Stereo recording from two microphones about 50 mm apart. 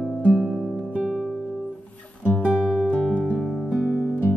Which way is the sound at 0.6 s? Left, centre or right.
Right.